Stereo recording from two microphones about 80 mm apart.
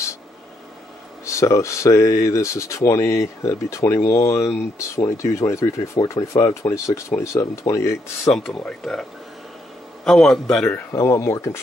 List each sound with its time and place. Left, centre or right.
1.2 s speech: left
8.3 s speech: centre
10.0 s a man's voice: centre
10.9 s speech: left